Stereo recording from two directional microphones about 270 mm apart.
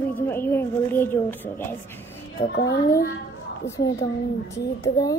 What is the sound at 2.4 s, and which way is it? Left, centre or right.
Speech, left.